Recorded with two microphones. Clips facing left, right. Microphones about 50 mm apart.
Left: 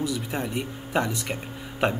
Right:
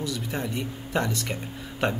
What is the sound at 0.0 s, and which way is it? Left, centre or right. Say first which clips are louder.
Speech: left 2 dB; centre.